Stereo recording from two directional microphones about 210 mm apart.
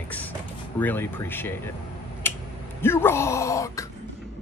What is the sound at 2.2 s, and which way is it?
Finger snapping, 10° left (ahead or behind).